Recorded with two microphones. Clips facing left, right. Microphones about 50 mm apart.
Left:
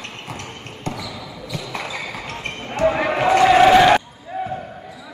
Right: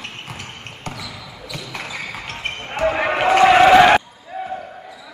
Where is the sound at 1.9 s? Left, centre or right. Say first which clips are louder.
Left 1 dB; right.